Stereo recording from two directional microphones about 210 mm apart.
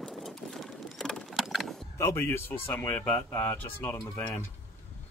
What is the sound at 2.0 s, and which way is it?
Speech, 15° left (ahead or behind).